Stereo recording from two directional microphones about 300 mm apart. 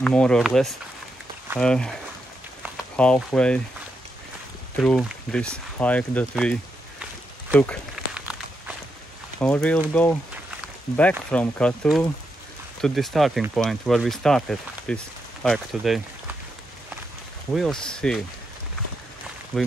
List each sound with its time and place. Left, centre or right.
0.0 s speech: centre
3.0 s speech: centre
4.8 s speech: centre
7.5 s a sound: centre
9.4 s speech: centre
17.6 s speech: centre
19.5 s speech: centre